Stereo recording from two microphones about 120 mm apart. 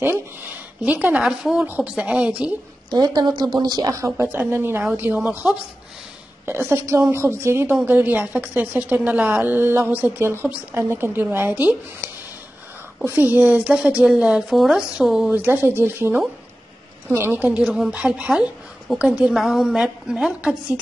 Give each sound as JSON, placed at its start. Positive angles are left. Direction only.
{"t": 0.0, "sound": "a woman's voice", "side_deg": -15}
{"t": 2.9, "sound": "a woman's voice", "side_deg": -35}